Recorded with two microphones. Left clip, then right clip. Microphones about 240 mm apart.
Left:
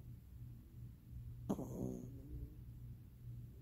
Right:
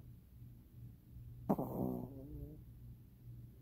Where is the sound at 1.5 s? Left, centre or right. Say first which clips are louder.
Right 6 dB; centre.